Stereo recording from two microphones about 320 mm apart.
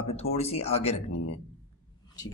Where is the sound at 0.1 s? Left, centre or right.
Centre.